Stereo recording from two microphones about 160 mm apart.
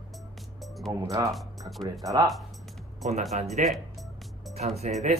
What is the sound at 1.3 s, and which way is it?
Speech, centre (ahead or behind).